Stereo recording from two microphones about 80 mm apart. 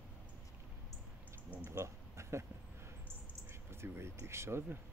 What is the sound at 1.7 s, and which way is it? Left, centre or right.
Speech, right.